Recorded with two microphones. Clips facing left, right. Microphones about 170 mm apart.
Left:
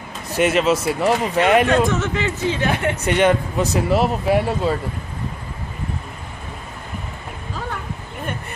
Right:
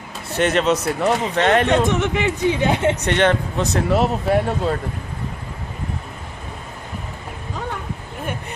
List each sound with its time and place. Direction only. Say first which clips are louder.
0.3 s speech: left 1 dB; 5° left (ahead or behind)
1.9 s speech: right 2 dB; 15° right (ahead or behind)
3.0 s speech: left 1 dB; 10° left (ahead or behind)